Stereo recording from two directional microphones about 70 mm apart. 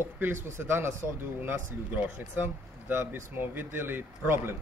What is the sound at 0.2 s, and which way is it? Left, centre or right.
Speech, right.